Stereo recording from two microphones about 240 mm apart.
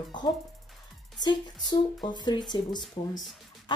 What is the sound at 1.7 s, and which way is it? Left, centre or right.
A woman's voice, centre.